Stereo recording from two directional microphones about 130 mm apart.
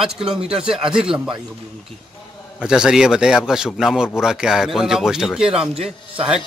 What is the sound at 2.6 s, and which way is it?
A man's voice, 5° right (ahead or behind).